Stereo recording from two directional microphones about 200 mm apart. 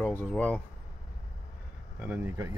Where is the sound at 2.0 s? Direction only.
10° right (ahead or behind).